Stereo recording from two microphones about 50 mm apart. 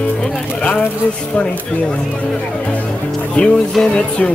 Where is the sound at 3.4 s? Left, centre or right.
Left.